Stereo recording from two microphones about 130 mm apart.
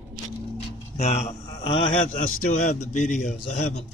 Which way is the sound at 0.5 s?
55° left (ahead or behind).